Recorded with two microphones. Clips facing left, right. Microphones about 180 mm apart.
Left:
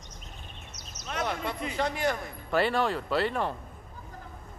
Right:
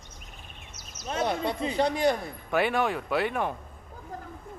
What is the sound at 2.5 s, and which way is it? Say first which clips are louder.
A man's voice: right 1 dB; 15° right (ahead or behind).